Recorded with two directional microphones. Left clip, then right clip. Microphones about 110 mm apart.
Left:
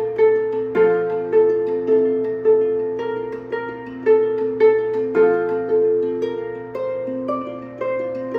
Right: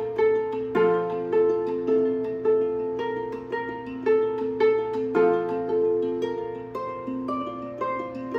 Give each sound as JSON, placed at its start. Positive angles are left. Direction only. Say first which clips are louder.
{"t": 0.2, "sound": "music", "louder": "left 6 dB", "side_deg": -25}